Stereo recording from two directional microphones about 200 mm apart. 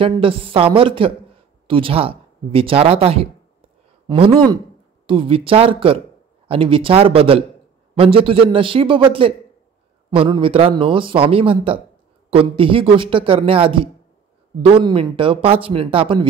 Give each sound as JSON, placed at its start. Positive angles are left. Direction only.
{"t": 0.0, "sound": "a man's voice", "side_deg": -25}